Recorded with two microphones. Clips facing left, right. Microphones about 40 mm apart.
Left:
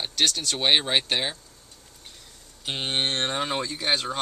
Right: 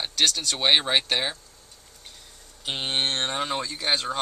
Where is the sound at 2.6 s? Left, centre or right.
Centre.